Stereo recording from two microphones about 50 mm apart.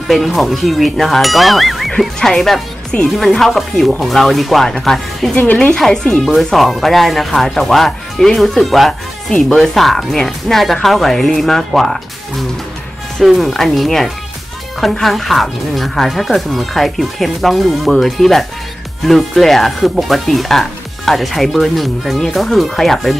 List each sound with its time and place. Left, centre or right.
0.1 s speech: centre
2.1 s speech: centre
2.9 s speech: left
3.3 s speech: centre
5.3 s a woman's voice: left
6.2 s speech: centre